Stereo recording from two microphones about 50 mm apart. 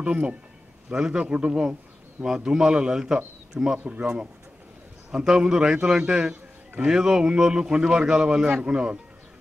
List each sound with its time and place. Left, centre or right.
0.0 s a man's voice: right
3.8 s a man's voice: right
5.1 s a man's voice: centre